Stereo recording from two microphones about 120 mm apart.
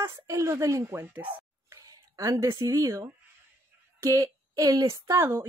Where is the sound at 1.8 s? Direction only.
30° right (ahead or behind).